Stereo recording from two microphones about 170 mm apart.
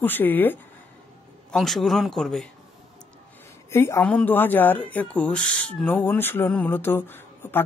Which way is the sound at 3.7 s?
15° left (ahead or behind).